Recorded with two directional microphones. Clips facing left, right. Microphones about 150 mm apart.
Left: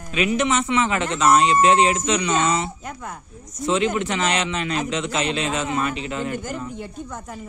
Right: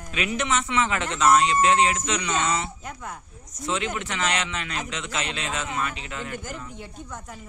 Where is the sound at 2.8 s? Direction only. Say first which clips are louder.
Left 3 dB; 50° left (ahead or behind).